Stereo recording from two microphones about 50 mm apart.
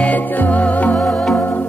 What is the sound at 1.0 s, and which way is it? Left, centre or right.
Music, centre.